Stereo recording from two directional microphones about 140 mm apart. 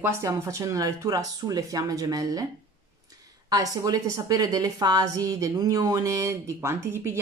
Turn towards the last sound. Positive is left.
turn(degrees=-15)  # may be behind; listen again after turning